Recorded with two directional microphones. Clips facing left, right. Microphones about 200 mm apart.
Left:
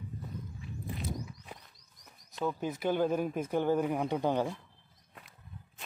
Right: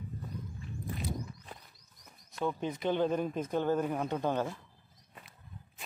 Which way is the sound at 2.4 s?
5° left (ahead or behind).